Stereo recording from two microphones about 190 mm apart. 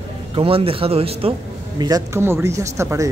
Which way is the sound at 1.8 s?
20° right (ahead or behind).